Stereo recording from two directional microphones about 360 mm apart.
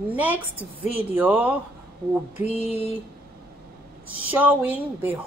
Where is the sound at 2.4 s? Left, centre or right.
Centre.